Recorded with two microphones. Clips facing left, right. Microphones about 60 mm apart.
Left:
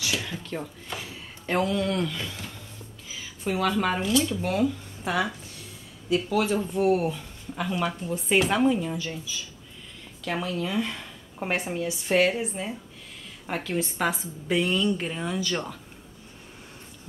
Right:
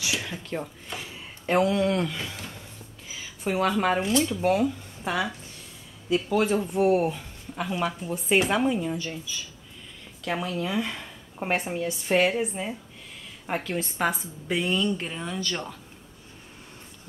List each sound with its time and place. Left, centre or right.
0.0 s a woman's voice: centre
3.4 s speech: right
3.7 s a woman's voice: centre
5.0 s speech: centre
6.7 s speech: right
7.5 s a woman's voice: centre
10.2 s speech: centre
13.7 s speech: centre